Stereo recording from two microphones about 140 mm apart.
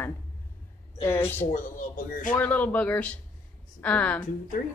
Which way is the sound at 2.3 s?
10° left (ahead or behind).